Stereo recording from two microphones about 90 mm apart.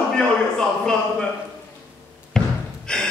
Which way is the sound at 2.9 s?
10° left (ahead or behind).